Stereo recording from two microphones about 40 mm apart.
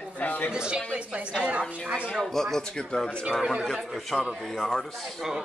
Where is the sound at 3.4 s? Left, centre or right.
Centre.